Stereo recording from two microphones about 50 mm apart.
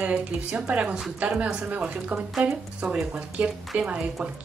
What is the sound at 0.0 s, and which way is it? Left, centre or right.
Speech, centre.